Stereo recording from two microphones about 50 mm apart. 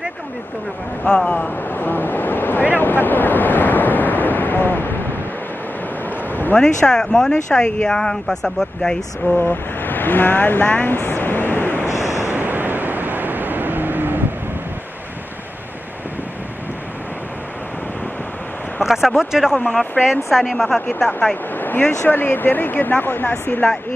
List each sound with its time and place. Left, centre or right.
1.0 s speech: centre
1.7 s vehicle: left
6.0 s a sound: left
6.6 s speech: centre
9.4 s speech: left
10.8 s a sound: left
11.9 s a sound: left
12.3 s vehicle: right
18.8 s speech: centre
20.2 s a woman's voice: centre
21.5 s a sound: left
22.0 s speech: left